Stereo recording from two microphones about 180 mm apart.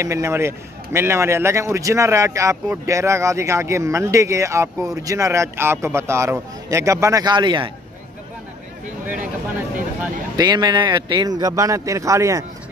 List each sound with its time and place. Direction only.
0.0 s a man's voice: 15° right (ahead or behind)
10.3 s a man's voice: 25° right (ahead or behind)